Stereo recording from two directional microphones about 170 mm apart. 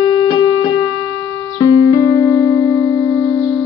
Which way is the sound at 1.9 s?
20° left (ahead or behind).